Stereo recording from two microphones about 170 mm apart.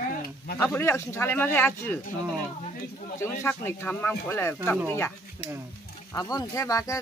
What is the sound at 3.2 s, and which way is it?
Speech, 15° left (ahead or behind).